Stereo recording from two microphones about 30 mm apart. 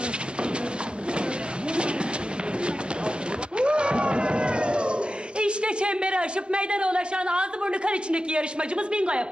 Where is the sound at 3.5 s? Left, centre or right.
Right.